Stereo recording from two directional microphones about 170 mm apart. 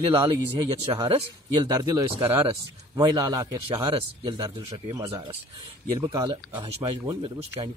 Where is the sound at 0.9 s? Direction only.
30° right (ahead or behind).